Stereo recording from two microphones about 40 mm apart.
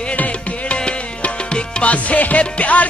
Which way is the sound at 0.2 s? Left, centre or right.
Left.